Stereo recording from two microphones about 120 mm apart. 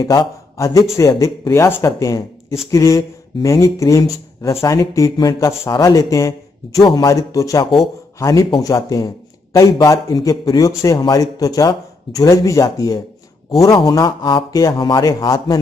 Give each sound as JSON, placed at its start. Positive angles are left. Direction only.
{"t": 0.0, "sound": "a man's voice", "side_deg": 30}